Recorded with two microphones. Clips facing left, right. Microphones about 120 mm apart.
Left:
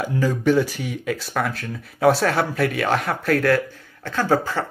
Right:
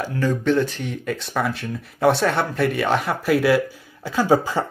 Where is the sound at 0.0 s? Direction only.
10° left (ahead or behind).